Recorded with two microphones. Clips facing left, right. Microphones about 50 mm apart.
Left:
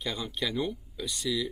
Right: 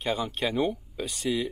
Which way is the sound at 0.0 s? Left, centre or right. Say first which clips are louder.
Right 5 dB; right.